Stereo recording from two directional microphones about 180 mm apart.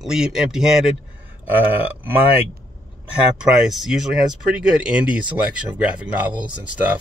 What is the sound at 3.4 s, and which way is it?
Speech, centre (ahead or behind).